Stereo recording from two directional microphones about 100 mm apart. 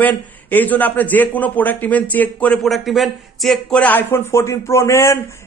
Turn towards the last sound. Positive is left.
turn(degrees=30)  # may be behind; listen again after turning